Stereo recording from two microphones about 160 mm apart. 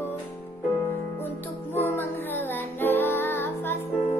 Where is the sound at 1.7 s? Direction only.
15° left (ahead or behind).